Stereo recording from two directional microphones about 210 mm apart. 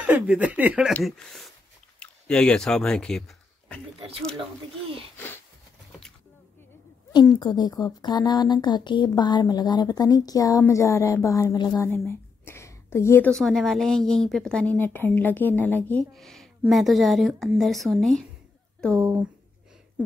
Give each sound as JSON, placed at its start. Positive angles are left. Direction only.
{"t": 0.0, "sound": "a woman's voice", "side_deg": -5}
{"t": 7.1, "sound": "a woman's voice", "side_deg": 20}
{"t": 18.9, "sound": "speech", "side_deg": -10}